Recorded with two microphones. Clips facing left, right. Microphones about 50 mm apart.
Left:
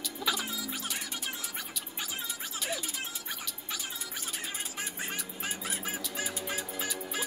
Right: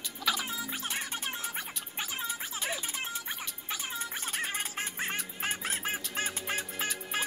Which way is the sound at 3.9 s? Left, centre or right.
Right.